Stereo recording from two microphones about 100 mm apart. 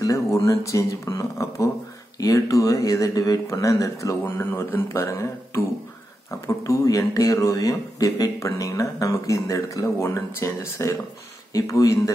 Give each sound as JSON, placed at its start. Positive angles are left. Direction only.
{"t": 0.0, "sound": "speech", "side_deg": 35}
{"t": 4.2, "sound": "speech", "side_deg": 25}